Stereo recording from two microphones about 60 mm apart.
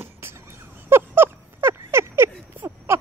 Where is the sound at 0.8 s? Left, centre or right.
Right.